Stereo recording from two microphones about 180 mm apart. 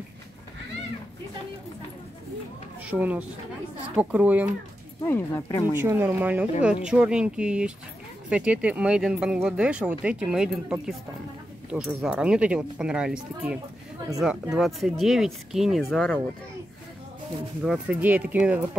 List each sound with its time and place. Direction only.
2.8 s speech: 5° right (ahead or behind)
5.0 s speech: 15° left (ahead or behind)
5.8 s speech: 15° right (ahead or behind); by 16.2 s 5° left (ahead or behind)
17.6 s speech: 10° right (ahead or behind)